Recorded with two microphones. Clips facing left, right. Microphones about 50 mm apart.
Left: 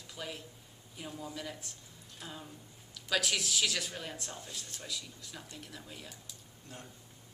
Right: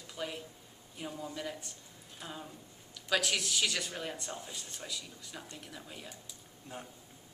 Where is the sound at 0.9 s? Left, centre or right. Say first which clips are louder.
Right 2 dB; centre.